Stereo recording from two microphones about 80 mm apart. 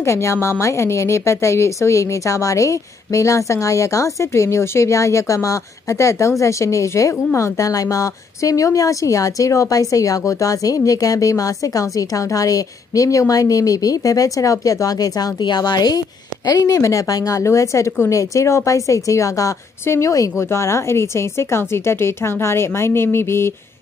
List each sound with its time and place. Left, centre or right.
0.0 s a woman's voice: left